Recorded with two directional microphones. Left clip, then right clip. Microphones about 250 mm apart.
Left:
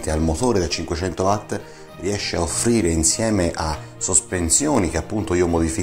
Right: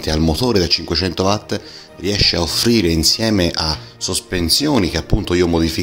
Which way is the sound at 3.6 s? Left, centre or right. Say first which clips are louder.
Right 4 dB; centre.